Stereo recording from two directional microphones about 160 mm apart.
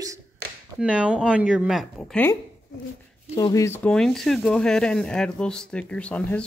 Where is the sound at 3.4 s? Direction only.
20° left (ahead or behind).